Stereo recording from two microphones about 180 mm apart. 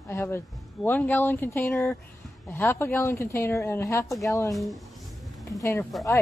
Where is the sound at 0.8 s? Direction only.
10° left (ahead or behind).